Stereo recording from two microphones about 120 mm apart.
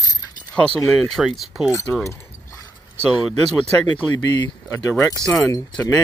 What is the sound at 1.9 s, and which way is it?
Speech, 25° left (ahead or behind).